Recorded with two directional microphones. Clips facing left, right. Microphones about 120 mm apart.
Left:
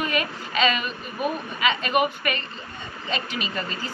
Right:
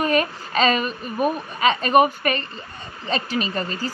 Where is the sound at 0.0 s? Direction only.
40° right (ahead or behind).